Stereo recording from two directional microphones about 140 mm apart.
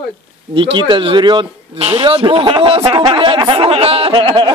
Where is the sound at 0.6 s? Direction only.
35° right (ahead or behind).